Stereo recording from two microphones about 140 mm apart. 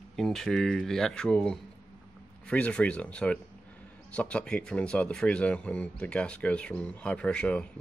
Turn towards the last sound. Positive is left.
turn(degrees=5)  # may be behind; listen again after turning